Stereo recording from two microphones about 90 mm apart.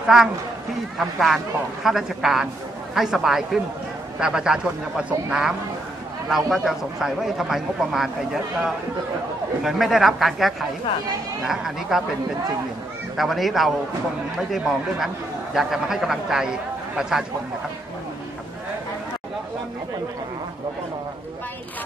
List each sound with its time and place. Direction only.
0.0 s a man's voice: 5° right (ahead or behind)
13.2 s speech: centre (ahead or behind)